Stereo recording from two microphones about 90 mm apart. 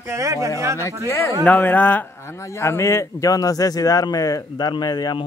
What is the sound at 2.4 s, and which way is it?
A man's voice, 30° left (ahead or behind).